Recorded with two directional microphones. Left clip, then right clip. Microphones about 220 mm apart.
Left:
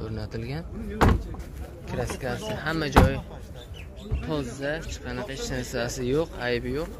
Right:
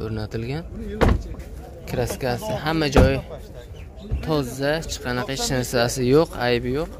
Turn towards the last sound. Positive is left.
turn(degrees=-20)  # may be behind; listen again after turning